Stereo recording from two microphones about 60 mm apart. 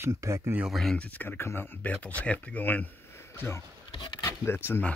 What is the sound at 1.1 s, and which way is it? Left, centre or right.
Speech, left.